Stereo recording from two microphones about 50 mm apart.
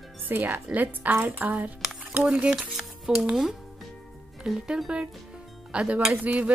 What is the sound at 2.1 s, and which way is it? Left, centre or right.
Speech, right.